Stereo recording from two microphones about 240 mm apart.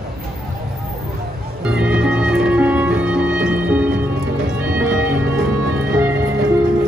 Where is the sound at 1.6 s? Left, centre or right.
Centre.